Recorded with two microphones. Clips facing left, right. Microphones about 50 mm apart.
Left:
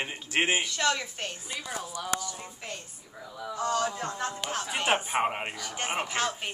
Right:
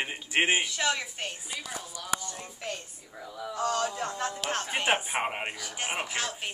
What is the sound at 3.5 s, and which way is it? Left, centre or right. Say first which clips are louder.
Speech: even; right.